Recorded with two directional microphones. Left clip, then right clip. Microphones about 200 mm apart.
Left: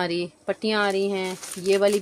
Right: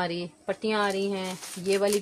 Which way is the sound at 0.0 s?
55° left (ahead or behind).